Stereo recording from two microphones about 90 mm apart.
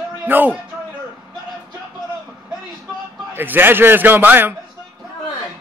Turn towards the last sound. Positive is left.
turn(degrees=-20)  # may be behind; listen again after turning